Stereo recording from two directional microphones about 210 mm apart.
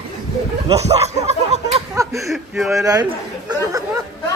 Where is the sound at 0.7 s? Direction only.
30° right (ahead or behind).